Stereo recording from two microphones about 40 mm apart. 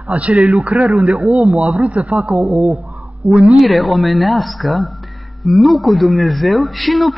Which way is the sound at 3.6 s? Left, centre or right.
Centre.